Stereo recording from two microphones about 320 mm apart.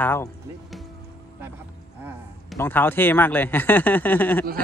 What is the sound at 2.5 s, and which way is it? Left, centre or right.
Speech, centre.